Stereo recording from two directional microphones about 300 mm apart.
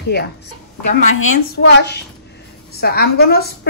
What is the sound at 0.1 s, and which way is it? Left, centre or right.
A woman's voice, left.